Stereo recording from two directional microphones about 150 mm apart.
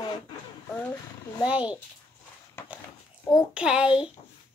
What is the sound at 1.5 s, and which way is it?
Speech, 10° right (ahead or behind).